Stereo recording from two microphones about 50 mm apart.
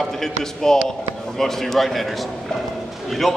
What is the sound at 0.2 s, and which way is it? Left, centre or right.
A man's voice, centre.